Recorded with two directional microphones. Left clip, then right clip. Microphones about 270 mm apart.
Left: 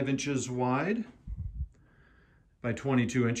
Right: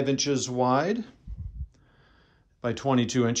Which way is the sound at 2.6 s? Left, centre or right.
Centre.